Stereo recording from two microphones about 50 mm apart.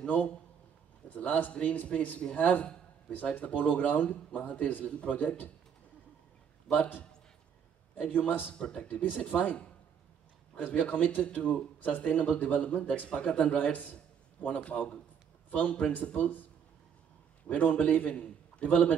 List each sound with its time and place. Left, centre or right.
1.0 s a man's voice: left
6.7 s a man's voice: left
8.1 s a man's voice: left
8.5 s speech: centre
8.8 s a man's voice: left
17.5 s a man's voice: left